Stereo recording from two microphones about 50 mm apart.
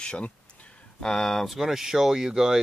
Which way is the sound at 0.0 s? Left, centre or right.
Left.